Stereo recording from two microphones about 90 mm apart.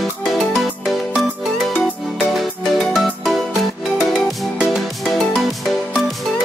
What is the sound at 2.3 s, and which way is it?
Music, centre (ahead or behind).